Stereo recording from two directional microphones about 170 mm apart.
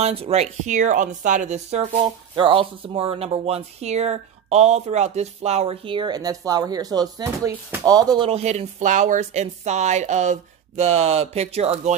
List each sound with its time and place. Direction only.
0.0 s speech: 35° right (ahead or behind)
2.3 s speech: 30° right (ahead or behind)
8.3 s speech: 40° right (ahead or behind)